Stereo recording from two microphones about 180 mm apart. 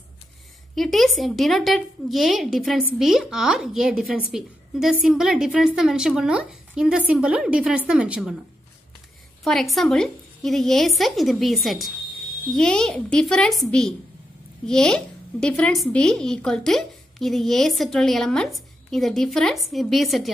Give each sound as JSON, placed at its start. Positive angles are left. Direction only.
{"t": 0.7, "sound": "a woman's voice", "side_deg": 0}
{"t": 9.4, "sound": "a woman's voice", "side_deg": 0}